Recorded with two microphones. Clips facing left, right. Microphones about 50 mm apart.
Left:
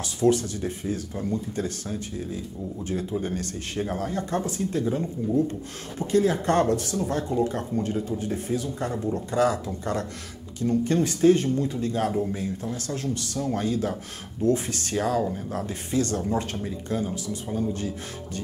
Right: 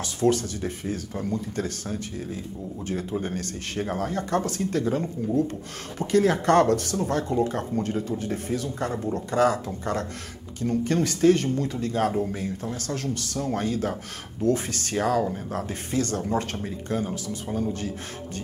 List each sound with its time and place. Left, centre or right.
0.0 s speech: right
4.5 s speech: right
10.6 s speech: right
12.1 s speech: centre
12.4 s speech: right